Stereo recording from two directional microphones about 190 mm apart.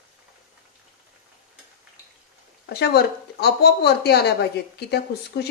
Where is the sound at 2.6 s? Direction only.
60° left (ahead or behind).